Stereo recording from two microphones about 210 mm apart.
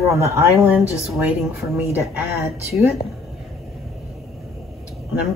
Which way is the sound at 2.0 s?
10° right (ahead or behind).